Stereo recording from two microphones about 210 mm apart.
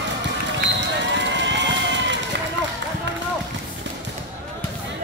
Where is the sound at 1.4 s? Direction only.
60° right (ahead or behind).